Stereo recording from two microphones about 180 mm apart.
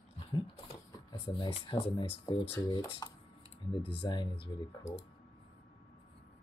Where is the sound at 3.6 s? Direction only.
30° left (ahead or behind).